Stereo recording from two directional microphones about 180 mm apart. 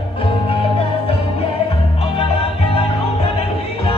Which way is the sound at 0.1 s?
30° left (ahead or behind).